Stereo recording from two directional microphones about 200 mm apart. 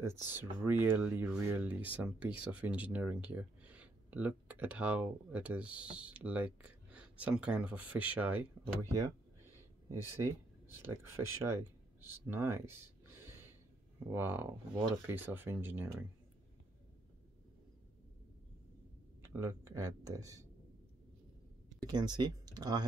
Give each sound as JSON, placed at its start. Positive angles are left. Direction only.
{"t": 0.0, "sound": "speech", "side_deg": -10}
{"t": 9.8, "sound": "speech", "side_deg": -10}
{"t": 19.2, "sound": "speech", "side_deg": -15}
{"t": 21.8, "sound": "speech", "side_deg": -20}